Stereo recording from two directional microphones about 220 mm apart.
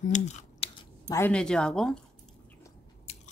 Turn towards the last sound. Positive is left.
turn(degrees=30)  # may be behind; listen again after turning